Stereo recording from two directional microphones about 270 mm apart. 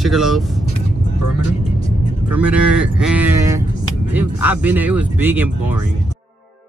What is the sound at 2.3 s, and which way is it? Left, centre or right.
Speech, centre.